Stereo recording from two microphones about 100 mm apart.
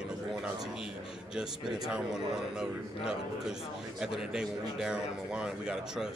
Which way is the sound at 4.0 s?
5° right (ahead or behind).